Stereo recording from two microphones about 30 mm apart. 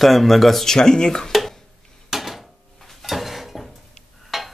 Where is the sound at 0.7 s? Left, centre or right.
Centre.